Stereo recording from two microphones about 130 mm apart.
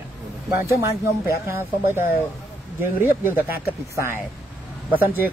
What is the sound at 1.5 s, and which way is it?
A man's voice, 15° right (ahead or behind).